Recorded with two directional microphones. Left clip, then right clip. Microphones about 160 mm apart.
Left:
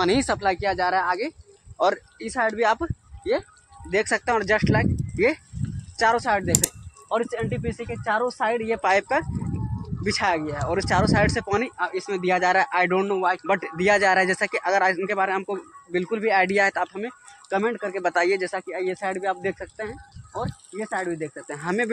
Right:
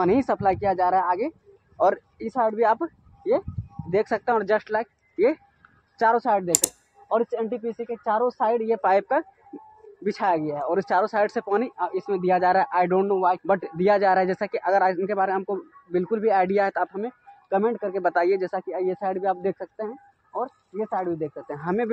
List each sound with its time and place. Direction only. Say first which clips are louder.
0.0 s speech: right 1 dB; 25° left (ahead or behind)
6.6 s speech: even; centre (ahead or behind)
7.1 s speech: right 2 dB; 20° left (ahead or behind)
10.5 s speech: right 1 dB; 10° left (ahead or behind)
10.8 s speech: left 1 dB; 25° left (ahead or behind)
18.6 s speech: right 1 dB; 15° left (ahead or behind)